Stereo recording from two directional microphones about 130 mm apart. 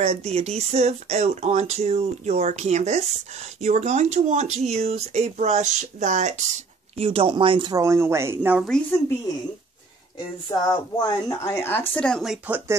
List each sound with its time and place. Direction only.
0.0 s speech: 50° right (ahead or behind)
7.0 s speech: 45° right (ahead or behind)
7.7 s speech: 20° right (ahead or behind)
10.1 s speech: 30° left (ahead or behind)
11.9 s speech: 5° left (ahead or behind)
12.4 s speech: 15° right (ahead or behind)